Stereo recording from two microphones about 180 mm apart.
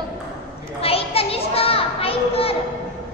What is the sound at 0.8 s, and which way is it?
Children playing, 30° left (ahead or behind).